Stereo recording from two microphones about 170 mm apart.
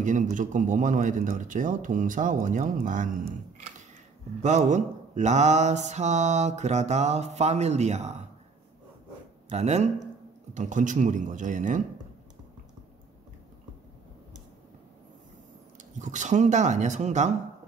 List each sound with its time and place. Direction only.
0.0 s speech: 50° right (ahead or behind)
4.4 s mantra: 45° right (ahead or behind)
9.5 s mantra: 40° right (ahead or behind)
10.5 s speech: 45° right (ahead or behind)
15.8 s speech: 45° right (ahead or behind)